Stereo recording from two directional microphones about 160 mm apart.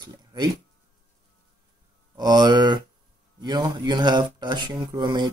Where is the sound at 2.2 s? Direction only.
25° right (ahead or behind).